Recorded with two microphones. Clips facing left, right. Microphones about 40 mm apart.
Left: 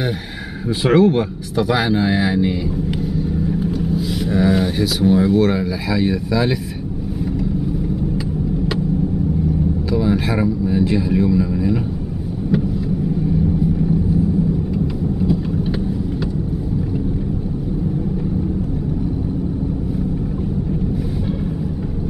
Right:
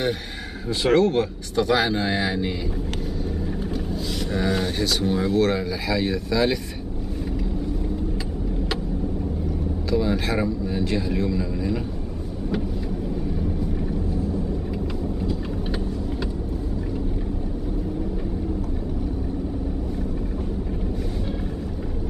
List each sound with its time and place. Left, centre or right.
0.8 s speech: centre
9.8 s speech: centre